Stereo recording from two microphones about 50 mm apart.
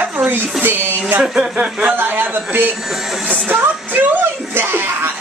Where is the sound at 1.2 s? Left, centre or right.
Centre.